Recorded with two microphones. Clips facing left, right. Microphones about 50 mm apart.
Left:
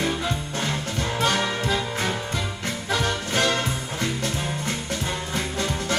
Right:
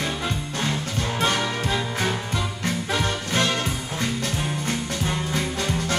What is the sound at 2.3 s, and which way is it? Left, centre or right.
Music, right.